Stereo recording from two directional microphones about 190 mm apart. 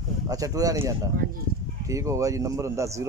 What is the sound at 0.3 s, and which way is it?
Speech, 20° right (ahead or behind).